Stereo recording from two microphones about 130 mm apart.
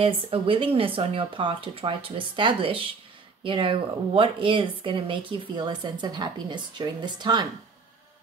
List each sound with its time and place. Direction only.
0.0 s speech: 45° right (ahead or behind)